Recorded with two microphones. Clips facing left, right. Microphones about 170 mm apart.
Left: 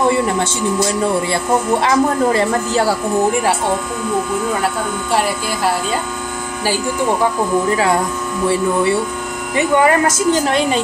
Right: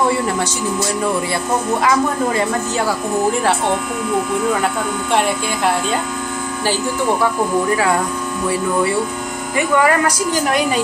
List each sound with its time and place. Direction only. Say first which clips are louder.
1.3 s a woman's voice: left 3 dB; 30° left (ahead or behind)
9.6 s a woman's voice: left 2 dB; 25° left (ahead or behind)